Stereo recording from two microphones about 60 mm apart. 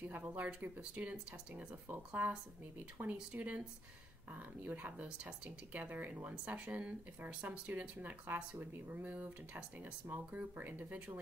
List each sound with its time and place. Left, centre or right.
0.0 s speech: right
5.0 s speech: centre
5.7 s speech: right
7.7 s speech: right